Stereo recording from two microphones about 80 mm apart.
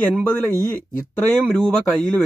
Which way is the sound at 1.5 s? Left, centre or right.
Centre.